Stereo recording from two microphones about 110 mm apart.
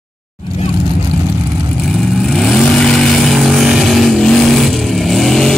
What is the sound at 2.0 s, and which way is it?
Vehicle, 5° left (ahead or behind).